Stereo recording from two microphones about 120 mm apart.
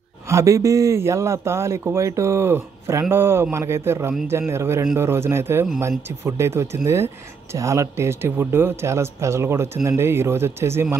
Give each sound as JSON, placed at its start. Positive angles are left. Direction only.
{"t": 0.3, "sound": "a man's voice", "side_deg": -25}